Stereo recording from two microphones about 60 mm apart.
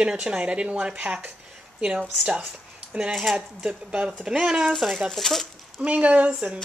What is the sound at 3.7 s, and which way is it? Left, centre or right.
Speech, centre.